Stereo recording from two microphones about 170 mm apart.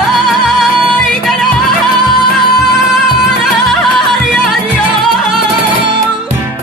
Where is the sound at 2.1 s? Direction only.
25° left (ahead or behind).